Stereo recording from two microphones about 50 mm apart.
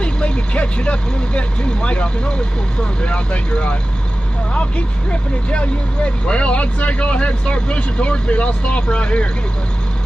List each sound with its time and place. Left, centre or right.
0.0 s speech: left